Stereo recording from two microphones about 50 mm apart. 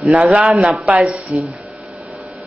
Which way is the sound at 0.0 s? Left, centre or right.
Right.